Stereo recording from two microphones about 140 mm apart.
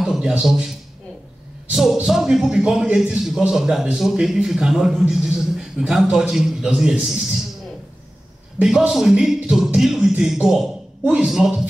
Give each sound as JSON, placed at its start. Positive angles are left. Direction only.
{"t": 0.0, "sound": "a man's voice", "side_deg": -5}
{"t": 8.5, "sound": "a man's voice", "side_deg": -5}